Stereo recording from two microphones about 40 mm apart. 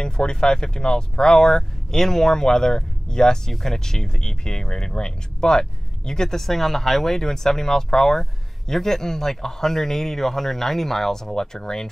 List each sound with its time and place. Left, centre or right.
0.0 s speech: left